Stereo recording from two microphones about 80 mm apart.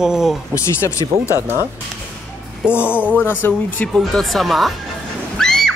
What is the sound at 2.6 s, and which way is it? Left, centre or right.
Speech, centre.